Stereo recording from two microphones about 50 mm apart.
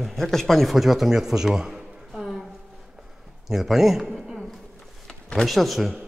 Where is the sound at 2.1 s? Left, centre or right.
Centre.